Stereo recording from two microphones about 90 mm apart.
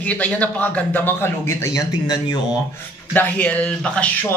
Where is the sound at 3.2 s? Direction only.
20° left (ahead or behind).